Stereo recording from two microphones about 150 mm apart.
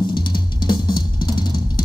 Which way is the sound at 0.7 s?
30° left (ahead or behind).